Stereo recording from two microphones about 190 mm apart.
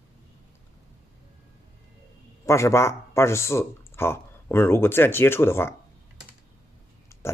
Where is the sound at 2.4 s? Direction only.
15° left (ahead or behind).